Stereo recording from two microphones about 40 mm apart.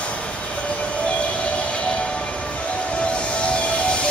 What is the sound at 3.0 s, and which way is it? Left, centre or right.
Train, left.